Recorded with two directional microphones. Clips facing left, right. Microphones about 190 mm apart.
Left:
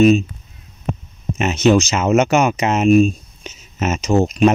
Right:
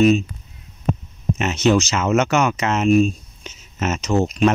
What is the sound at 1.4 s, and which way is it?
Speech, 15° left (ahead or behind).